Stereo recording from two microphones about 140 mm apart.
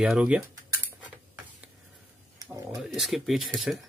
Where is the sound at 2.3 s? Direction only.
20° right (ahead or behind).